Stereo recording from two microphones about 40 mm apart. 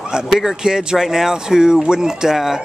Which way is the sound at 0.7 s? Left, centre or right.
Centre.